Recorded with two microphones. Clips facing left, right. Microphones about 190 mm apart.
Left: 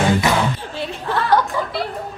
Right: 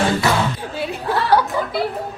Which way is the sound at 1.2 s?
5° right (ahead or behind).